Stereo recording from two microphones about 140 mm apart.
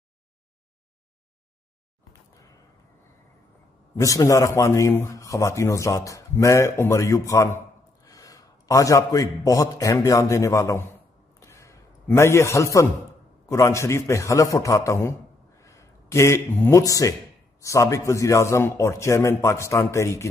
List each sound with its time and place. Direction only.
4.0 s a man's voice: 25° left (ahead or behind)